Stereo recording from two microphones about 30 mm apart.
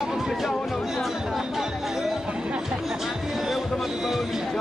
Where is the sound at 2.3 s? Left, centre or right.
Right.